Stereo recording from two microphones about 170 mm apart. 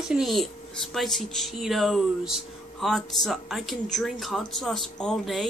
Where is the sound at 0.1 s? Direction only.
Centre (ahead or behind).